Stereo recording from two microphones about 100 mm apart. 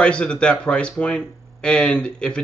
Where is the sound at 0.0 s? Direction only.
10° left (ahead or behind).